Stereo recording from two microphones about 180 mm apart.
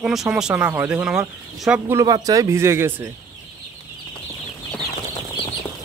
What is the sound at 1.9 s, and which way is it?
Speech, 20° right (ahead or behind).